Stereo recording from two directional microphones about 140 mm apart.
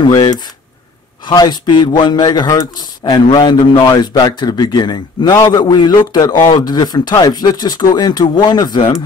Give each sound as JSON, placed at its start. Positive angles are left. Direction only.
{"t": 0.0, "sound": "speech", "side_deg": 30}